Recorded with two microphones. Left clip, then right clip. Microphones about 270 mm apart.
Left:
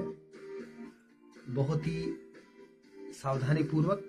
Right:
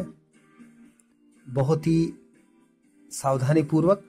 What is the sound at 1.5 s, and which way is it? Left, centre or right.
Speech, right.